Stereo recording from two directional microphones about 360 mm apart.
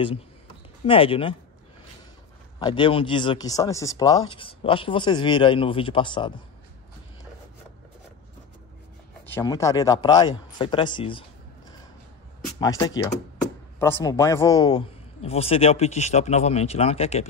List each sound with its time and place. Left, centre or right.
0.8 s speech: centre
2.6 s speech: centre
9.2 s speech: centre
12.5 s speech: centre